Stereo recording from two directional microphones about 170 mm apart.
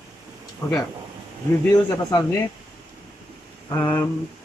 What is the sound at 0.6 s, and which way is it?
Speech, 15° left (ahead or behind).